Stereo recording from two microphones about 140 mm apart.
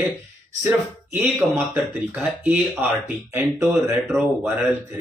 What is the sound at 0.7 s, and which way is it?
Speech, 15° right (ahead or behind).